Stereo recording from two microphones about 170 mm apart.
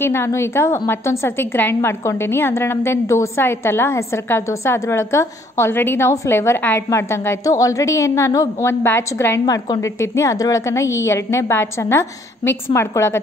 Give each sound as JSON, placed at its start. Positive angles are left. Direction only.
{"t": 0.0, "sound": "a woman's voice", "side_deg": 15}